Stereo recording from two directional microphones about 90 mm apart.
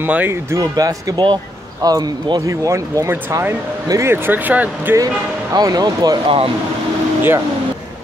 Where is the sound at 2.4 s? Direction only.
35° right (ahead or behind); by 4.9 s 20° right (ahead or behind).